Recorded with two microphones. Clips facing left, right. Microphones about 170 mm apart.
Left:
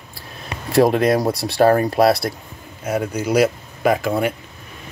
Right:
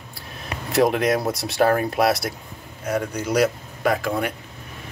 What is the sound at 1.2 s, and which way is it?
Speech, 30° left (ahead or behind).